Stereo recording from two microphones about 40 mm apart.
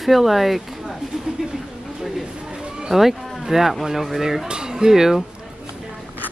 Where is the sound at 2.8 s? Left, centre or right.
Centre.